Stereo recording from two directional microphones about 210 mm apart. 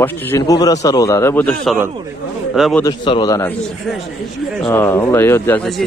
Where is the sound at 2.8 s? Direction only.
20° left (ahead or behind).